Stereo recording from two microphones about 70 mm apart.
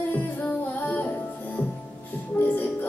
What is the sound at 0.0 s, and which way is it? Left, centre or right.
Music, left.